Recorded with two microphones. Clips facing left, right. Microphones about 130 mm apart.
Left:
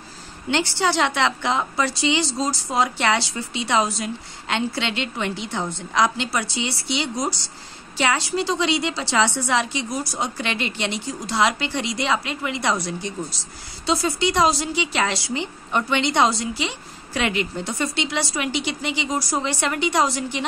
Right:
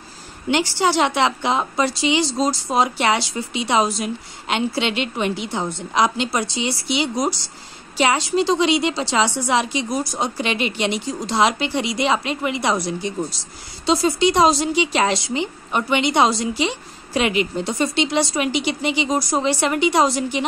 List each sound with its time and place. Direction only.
0.5 s a woman's voice: 15° right (ahead or behind)